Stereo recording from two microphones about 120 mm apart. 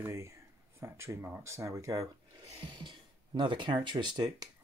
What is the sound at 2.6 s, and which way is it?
Speech, 40° right (ahead or behind).